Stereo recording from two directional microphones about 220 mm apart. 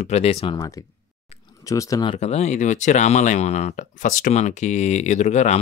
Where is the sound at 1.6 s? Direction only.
15° left (ahead or behind).